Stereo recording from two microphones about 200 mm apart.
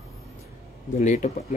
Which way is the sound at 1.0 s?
35° left (ahead or behind).